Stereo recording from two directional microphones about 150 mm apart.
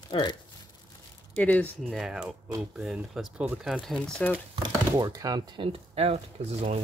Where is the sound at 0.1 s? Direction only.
30° left (ahead or behind).